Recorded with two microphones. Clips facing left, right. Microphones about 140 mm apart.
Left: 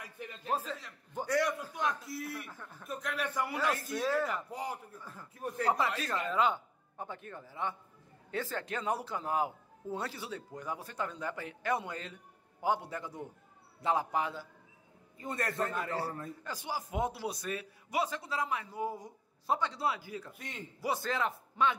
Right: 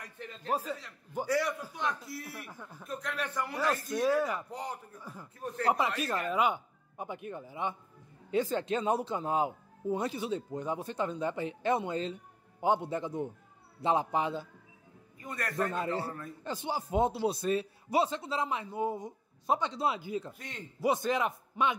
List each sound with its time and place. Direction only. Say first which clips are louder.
0.0 s speech: even; 10° left (ahead or behind)
0.5 s a man's voice: right 2 dB; 10° right (ahead or behind)
2.5 s speech: right 2 dB; 10° right (ahead or behind)
2.8 s a man's voice: even; centre (ahead or behind)
3.9 s speech: right 3 dB; 15° right (ahead or behind)
4.5 s a man's voice: even; 5° left (ahead or behind)
4.9 s a man's voice: right 2 dB; 15° right (ahead or behind)
15.1 s a man's voice: left 2 dB; 25° left (ahead or behind)
15.7 s a man's voice: right 2 dB; 25° right (ahead or behind)
20.3 s a man's voice: even; centre (ahead or behind)
20.8 s speech: right 5 dB; 20° right (ahead or behind)